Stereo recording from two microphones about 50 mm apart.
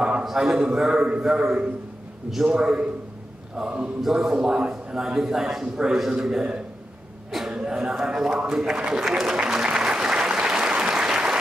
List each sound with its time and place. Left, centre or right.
0.2 s a man's voice: centre
7.2 s a sound: centre
7.5 s a man's voice: centre
9.4 s applause: centre